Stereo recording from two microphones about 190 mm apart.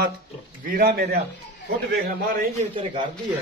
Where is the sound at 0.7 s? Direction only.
50° right (ahead or behind).